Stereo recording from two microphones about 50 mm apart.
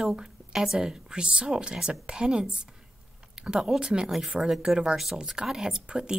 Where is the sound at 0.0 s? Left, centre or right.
Centre.